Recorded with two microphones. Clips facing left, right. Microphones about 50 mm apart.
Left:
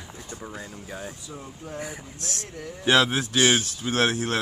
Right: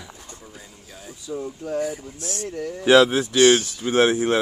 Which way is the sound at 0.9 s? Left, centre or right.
Left.